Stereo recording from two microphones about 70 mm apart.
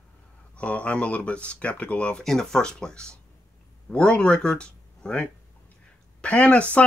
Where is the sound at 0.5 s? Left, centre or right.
Centre.